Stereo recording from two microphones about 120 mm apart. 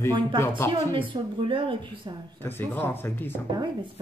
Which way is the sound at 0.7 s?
45° right (ahead or behind).